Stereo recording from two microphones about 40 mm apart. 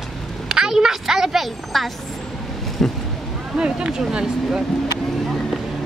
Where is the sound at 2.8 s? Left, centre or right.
Centre.